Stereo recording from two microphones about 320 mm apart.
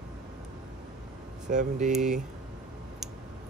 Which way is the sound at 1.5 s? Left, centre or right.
Right.